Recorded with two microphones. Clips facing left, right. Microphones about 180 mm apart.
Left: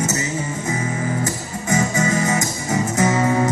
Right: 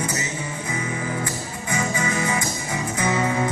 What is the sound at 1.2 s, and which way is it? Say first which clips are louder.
Music: left 4 dB; 40° left (ahead or behind).